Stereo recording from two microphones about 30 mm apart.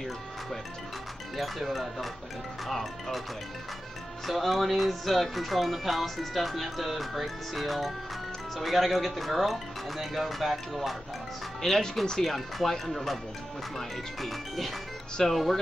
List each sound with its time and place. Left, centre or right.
1.3 s speech: centre
4.3 s speech: centre
11.6 s speech: centre
12.2 s speech: centre